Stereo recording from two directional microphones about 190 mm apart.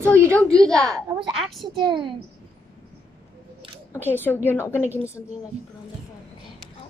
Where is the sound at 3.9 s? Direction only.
10° left (ahead or behind).